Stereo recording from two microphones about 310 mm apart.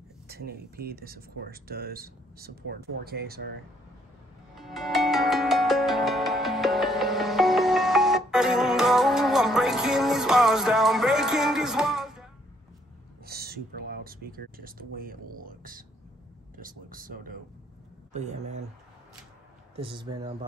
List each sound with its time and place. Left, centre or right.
0.3 s speech: right
4.6 s music: centre
13.2 s speech: right
19.7 s speech: centre